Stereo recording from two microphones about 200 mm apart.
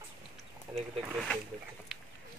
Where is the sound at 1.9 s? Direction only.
Centre (ahead or behind).